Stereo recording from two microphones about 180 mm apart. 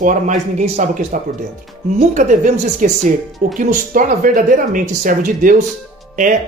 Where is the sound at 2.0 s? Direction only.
45° right (ahead or behind).